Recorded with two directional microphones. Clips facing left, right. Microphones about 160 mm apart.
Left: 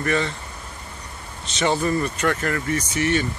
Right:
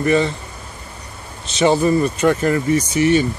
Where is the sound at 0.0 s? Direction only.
15° right (ahead or behind).